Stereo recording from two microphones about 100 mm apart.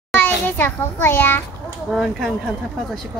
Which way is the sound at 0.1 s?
20° left (ahead or behind).